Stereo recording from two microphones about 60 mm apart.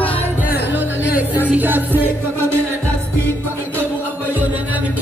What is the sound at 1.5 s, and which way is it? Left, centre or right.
Music, right.